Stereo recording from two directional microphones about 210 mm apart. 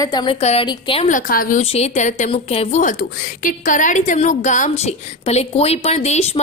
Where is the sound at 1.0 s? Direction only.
40° left (ahead or behind).